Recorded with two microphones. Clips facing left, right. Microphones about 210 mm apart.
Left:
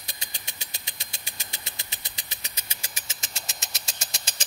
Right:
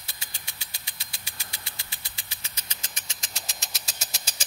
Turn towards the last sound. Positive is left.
turn(degrees=0)  # may be behind; listen again after turning